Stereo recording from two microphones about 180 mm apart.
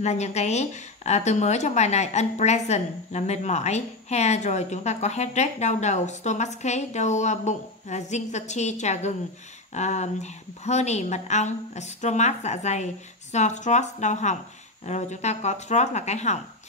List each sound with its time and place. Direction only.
0.0 s a woman's voice: 40° left (ahead or behind)